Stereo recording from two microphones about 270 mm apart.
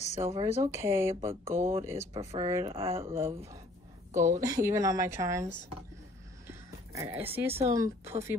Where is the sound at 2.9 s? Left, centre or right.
Centre.